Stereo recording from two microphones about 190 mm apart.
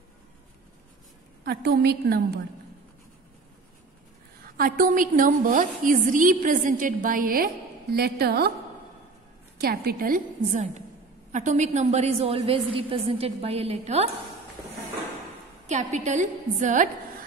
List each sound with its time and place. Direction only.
1.4 s a woman's voice: 55° right (ahead or behind)
4.4 s a woman's voice: 50° right (ahead or behind)
9.6 s a woman's voice: 55° right (ahead or behind); by 14.1 s 35° right (ahead or behind)
15.6 s a woman's voice: 35° right (ahead or behind)